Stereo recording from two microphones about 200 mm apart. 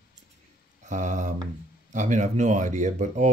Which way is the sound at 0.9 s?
40° right (ahead or behind).